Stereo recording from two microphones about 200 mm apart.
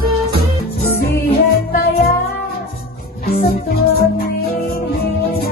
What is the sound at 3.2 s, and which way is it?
Music, 50° left (ahead or behind).